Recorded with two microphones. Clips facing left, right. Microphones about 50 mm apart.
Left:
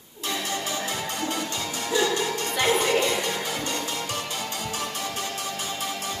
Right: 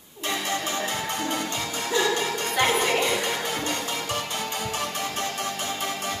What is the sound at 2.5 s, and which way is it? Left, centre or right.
Music, right.